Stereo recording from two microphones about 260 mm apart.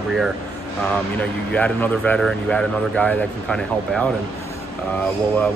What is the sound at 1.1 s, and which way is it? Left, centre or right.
Speech, centre.